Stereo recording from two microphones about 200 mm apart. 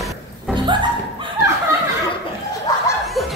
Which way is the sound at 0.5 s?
25° right (ahead or behind).